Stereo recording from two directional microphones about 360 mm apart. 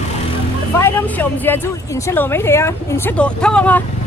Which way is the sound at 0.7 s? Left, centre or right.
Centre.